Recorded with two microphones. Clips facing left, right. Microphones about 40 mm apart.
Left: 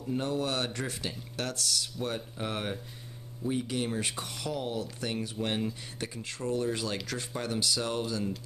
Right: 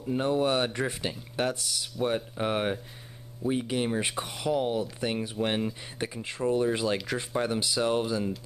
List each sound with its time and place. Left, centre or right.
0.1 s speech: right